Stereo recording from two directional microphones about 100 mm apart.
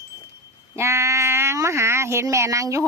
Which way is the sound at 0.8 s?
30° right (ahead or behind).